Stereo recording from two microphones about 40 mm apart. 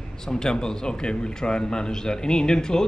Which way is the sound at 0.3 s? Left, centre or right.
Centre.